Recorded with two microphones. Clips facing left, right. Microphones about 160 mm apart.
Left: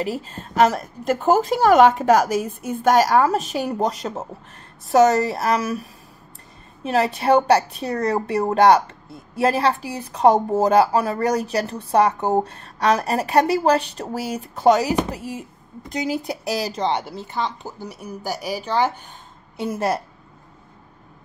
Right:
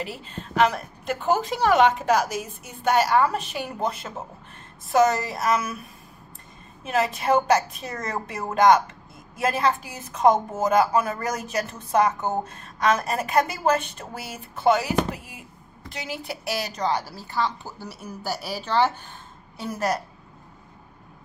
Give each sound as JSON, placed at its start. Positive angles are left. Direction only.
{"t": 0.0, "sound": "a woman's voice", "side_deg": 40}
{"t": 19.5, "sound": "a woman's voice", "side_deg": 25}